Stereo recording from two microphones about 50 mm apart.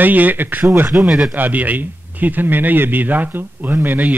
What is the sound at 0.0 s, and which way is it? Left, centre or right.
A man's voice, right.